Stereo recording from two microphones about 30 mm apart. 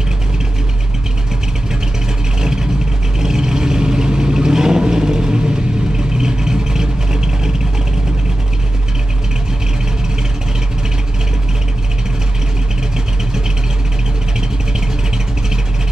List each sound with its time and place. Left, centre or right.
2.4 s vehicle: right